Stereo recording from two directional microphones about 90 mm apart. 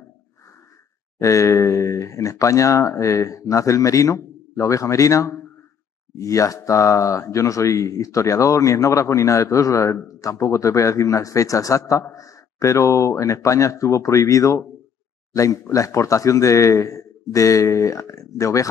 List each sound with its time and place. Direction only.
1.2 s speech: 35° left (ahead or behind)